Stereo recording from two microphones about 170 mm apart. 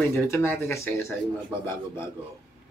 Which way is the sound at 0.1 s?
15° left (ahead or behind).